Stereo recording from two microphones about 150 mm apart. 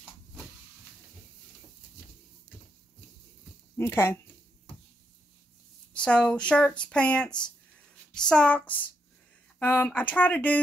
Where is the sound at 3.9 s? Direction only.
15° left (ahead or behind).